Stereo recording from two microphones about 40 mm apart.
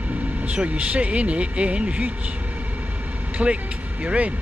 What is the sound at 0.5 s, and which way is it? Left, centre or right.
Speech, right.